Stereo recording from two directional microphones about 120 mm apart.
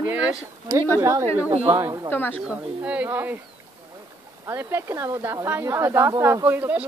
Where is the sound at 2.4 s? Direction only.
10° right (ahead or behind).